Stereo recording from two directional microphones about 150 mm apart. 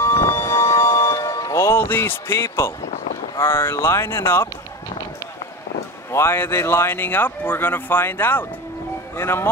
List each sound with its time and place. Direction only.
0.0 s music: 20° left (ahead or behind)
3.3 s speech: 15° left (ahead or behind)
6.1 s speech: 15° left (ahead or behind)